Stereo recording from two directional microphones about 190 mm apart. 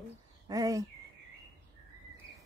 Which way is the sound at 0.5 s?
20° right (ahead or behind).